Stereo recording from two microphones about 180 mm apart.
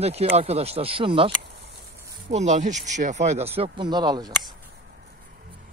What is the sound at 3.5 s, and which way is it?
Speech, 30° right (ahead or behind).